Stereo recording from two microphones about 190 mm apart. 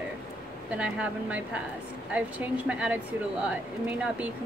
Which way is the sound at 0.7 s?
5° right (ahead or behind).